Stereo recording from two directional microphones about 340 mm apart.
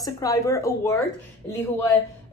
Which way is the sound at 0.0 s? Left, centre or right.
Centre.